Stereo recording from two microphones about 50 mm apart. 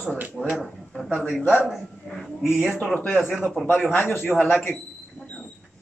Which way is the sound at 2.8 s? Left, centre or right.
Left.